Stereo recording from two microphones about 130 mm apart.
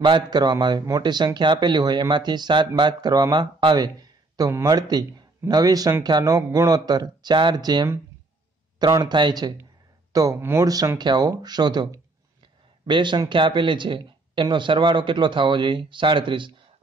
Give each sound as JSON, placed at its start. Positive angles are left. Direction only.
{"t": 0.0, "sound": "speech", "side_deg": -35}
{"t": 4.4, "sound": "speech", "side_deg": -25}